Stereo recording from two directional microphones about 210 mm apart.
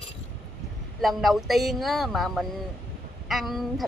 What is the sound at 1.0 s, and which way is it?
A woman's voice, centre (ahead or behind).